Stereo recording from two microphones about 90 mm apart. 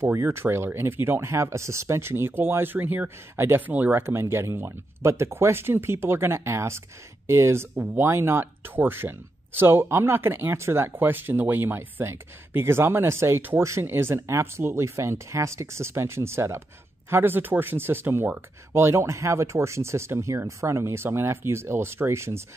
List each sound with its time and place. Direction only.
0.0 s speech: 30° right (ahead or behind)